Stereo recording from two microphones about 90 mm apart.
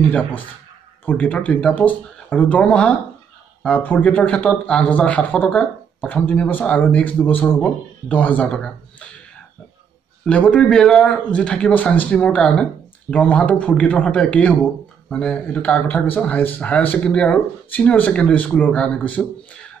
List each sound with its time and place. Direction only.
0.0 s a man's voice: 15° left (ahead or behind)
10.2 s a man's voice: 10° left (ahead or behind)